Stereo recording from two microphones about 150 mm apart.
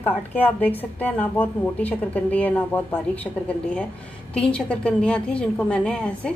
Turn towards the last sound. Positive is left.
turn(degrees=5)  # may be behind; listen again after turning